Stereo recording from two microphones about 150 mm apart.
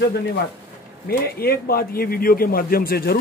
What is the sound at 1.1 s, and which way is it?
A man's voice, 90° left.